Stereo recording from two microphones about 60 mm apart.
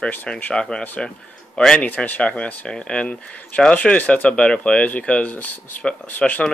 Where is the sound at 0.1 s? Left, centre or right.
Left.